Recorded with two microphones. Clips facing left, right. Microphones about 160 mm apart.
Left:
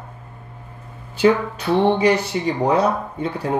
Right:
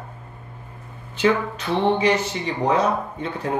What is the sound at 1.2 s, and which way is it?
Speech, 35° left (ahead or behind).